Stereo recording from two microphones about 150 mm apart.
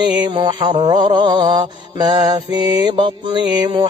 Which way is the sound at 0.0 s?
30° right (ahead or behind).